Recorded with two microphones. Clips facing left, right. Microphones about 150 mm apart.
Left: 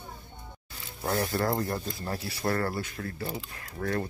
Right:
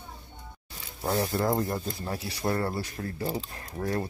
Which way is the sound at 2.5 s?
25° right (ahead or behind).